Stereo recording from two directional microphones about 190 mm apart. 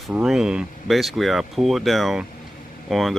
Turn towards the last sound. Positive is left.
turn(degrees=0)  # may be behind; listen again after turning